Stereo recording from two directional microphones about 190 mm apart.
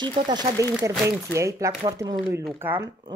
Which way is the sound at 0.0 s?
20° right (ahead or behind).